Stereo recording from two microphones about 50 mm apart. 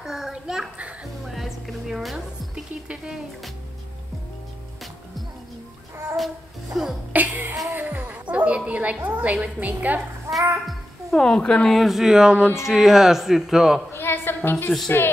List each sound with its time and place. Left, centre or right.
0.0 s a sound: centre
1.2 s music: centre
6.1 s music: centre
7.1 s music: right
7.7 s a sound: right
10.3 s music: right
10.7 s music: centre
11.2 s speech: centre
11.7 s speech: centre
13.9 s a sound: left
14.9 s speech: left